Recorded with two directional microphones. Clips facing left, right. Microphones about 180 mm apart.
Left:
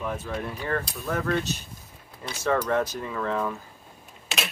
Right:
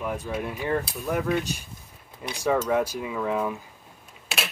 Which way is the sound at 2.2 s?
15° right (ahead or behind).